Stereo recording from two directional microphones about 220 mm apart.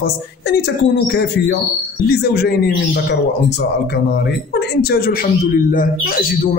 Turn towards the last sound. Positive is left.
turn(degrees=40)  # may be behind; listen again after turning